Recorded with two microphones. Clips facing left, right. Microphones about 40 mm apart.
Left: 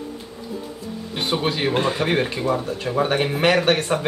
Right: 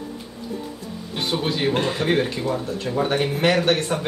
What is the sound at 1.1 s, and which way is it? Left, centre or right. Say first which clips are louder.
Speech: left 1 dB; centre.